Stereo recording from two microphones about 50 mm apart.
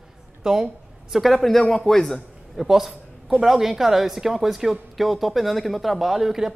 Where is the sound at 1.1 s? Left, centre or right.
Centre.